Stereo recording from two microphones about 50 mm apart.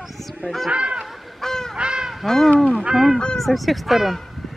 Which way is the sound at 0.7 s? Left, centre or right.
Right.